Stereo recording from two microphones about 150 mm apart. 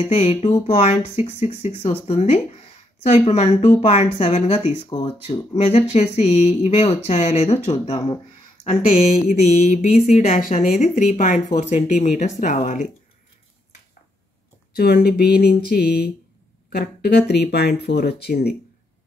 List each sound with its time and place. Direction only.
0.0 s speech: 40° left (ahead or behind)
14.8 s speech: 90° left